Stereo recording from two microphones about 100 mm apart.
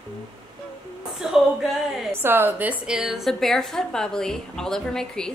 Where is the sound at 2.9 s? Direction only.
5° right (ahead or behind).